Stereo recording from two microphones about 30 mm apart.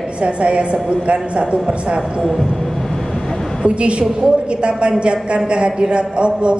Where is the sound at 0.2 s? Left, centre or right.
Right.